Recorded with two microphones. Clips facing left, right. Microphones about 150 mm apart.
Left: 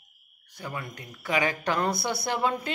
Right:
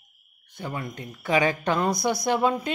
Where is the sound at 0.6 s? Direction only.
25° right (ahead or behind).